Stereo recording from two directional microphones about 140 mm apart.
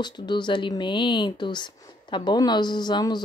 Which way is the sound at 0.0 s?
30° left (ahead or behind).